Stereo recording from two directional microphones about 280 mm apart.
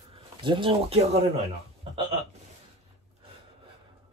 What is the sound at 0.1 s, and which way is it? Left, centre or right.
Speech, centre.